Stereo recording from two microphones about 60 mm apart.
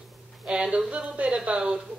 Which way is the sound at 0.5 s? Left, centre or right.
Centre.